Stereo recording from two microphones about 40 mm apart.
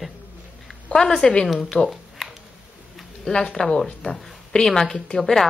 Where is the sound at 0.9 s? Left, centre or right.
Centre.